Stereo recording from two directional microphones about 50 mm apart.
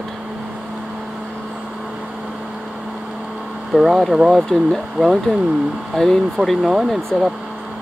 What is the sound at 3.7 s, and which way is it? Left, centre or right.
Speech, centre.